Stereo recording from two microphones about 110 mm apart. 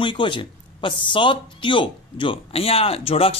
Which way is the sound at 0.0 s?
45° left (ahead or behind).